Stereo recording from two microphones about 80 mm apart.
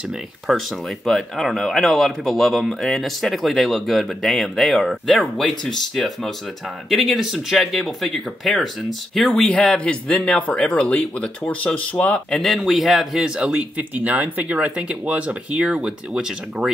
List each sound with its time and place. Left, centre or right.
0.5 s speech: centre
12.4 s speech: centre